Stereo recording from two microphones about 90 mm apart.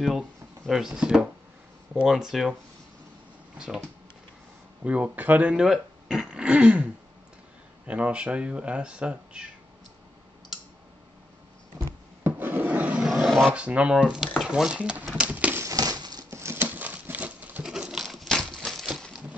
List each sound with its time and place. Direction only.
0.7 s speech: 5° right (ahead or behind)
3.5 s speech: 10° right (ahead or behind)
4.8 s speech: 15° right (ahead or behind)
12.2 s filing: 20° right (ahead or behind); by 13.5 s centre (ahead or behind)
13.5 s speech: 15° right (ahead or behind)
15.1 s typewriter: 15° right (ahead or behind)
15.5 s a sound: 35° right (ahead or behind)
15.8 s crumpling: 50° right (ahead or behind)
16.3 s goat: 30° right (ahead or behind)
17.6 s pigeon: 5° right (ahead or behind)
18.0 s a sound: 5° left (ahead or behind)